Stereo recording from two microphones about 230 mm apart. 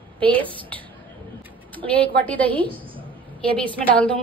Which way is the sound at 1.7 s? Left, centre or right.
Centre.